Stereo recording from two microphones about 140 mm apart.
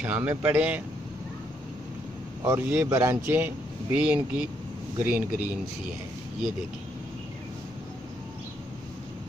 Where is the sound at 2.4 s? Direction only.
15° right (ahead or behind).